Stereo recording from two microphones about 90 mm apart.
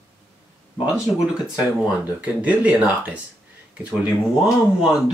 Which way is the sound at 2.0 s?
15° right (ahead or behind).